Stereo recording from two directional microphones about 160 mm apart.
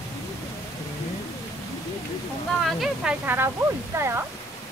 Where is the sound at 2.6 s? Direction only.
Centre (ahead or behind).